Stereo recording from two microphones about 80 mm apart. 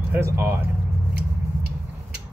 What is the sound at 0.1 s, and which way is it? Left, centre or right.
Speech, right.